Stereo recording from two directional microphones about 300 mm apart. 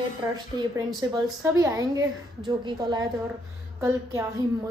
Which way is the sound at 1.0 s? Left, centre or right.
Centre.